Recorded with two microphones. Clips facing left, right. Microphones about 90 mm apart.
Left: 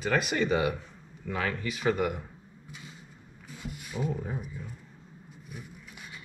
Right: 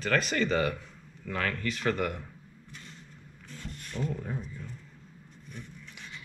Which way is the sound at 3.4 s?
10° left (ahead or behind).